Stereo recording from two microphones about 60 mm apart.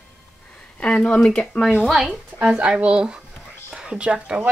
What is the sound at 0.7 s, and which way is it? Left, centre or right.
Speech, centre.